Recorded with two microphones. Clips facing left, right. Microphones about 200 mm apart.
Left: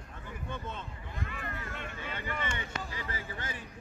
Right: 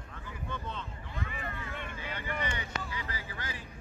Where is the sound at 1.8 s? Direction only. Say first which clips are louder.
Even; 50° left (ahead or behind).